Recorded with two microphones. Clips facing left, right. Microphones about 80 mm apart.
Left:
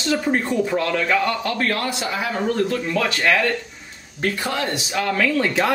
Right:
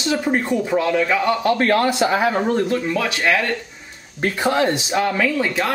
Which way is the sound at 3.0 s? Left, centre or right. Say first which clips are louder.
Left 3 dB; centre.